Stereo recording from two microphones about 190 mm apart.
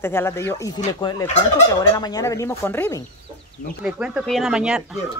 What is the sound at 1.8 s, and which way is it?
Speech, 20° left (ahead or behind).